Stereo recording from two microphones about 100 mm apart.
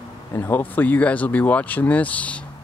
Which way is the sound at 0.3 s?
20° left (ahead or behind).